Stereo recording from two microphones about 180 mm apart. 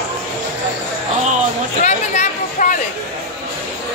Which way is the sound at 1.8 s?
40° left (ahead or behind).